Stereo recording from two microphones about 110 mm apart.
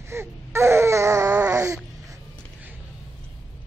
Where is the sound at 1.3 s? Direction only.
15° right (ahead or behind).